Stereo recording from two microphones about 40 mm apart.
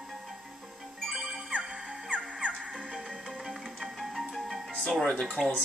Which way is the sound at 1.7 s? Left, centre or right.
Right.